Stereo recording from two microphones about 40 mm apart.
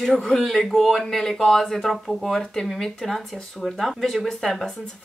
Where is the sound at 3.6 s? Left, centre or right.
Centre.